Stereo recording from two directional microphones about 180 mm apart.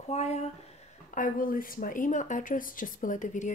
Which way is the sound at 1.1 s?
50° left (ahead or behind).